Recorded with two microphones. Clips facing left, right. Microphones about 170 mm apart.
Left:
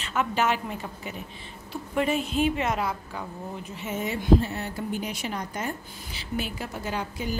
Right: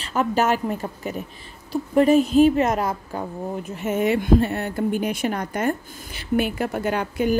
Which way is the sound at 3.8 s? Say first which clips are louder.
Right 10 dB; 60° right (ahead or behind).